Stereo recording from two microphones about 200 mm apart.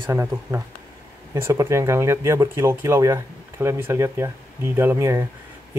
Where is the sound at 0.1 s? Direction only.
15° right (ahead or behind).